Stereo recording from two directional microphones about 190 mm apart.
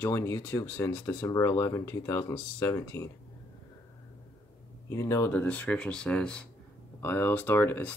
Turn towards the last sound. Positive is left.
turn(degrees=10)  # may be behind; listen again after turning